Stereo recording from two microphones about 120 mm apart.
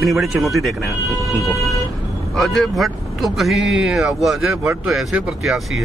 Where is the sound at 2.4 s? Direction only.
Centre (ahead or behind).